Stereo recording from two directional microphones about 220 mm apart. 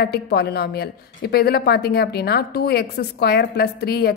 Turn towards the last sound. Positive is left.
turn(degrees=45)  # may be behind; listen again after turning